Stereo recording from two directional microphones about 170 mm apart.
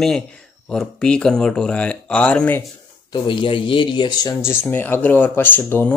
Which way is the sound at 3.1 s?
30° left (ahead or behind).